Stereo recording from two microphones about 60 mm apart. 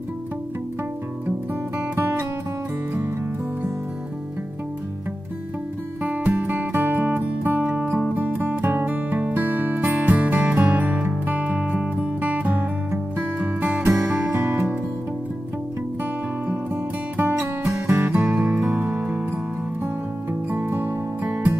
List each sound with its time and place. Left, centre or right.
6.0 s music: right
16.0 s music: right